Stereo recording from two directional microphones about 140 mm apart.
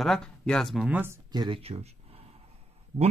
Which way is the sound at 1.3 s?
30° right (ahead or behind).